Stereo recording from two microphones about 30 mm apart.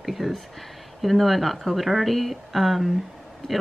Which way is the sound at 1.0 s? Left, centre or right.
Centre.